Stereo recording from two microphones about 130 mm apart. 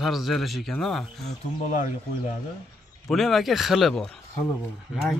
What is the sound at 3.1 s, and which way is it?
A man's voice, centre (ahead or behind).